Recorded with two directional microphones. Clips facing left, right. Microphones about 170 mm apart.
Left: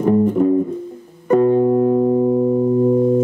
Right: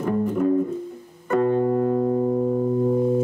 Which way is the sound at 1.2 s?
20° left (ahead or behind).